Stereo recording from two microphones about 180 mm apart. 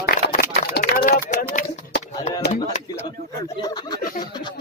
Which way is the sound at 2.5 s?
40° left (ahead or behind).